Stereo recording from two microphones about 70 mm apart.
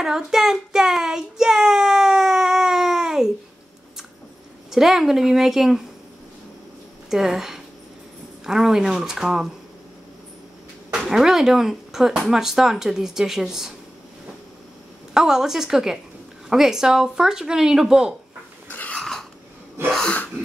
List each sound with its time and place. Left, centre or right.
0.0 s child singing: centre
4.6 s a woman's voice: centre
7.1 s speech: centre
10.9 s speech: centre
15.1 s speech: centre
18.7 s a sound: left
18.9 s a sound: centre
19.9 s sneeze: centre